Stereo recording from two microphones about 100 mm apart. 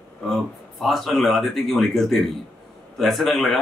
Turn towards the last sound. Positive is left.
turn(degrees=0)  # may be behind; listen again after turning